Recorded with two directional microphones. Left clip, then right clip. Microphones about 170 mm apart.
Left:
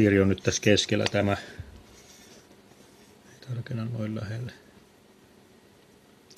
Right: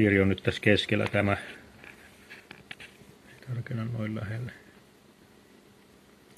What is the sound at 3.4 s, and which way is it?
Speech, 15° left (ahead or behind).